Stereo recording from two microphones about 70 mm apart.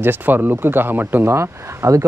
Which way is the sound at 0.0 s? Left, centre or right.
Right.